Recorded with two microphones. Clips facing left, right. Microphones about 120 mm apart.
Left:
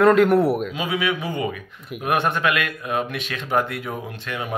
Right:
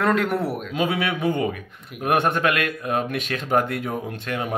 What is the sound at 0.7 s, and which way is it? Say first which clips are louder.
Speech: right 1 dB; 50° right (ahead or behind).